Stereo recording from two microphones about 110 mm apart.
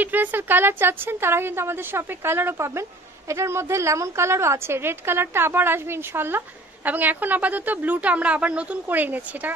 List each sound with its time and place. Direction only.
0.0 s a woman's voice: 15° right (ahead or behind)